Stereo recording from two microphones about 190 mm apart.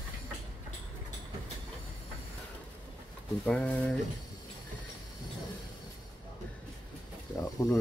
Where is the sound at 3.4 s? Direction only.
5° left (ahead or behind).